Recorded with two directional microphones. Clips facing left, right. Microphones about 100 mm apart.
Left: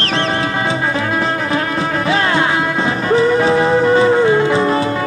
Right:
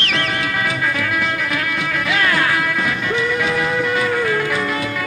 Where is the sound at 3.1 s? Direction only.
35° left (ahead or behind).